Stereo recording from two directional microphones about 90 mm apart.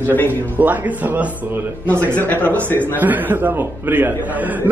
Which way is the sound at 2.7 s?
20° left (ahead or behind).